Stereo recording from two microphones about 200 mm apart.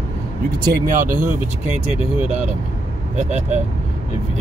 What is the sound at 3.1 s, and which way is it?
Speech, 35° right (ahead or behind).